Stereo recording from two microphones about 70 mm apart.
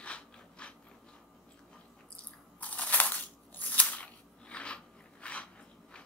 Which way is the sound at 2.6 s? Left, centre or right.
Left.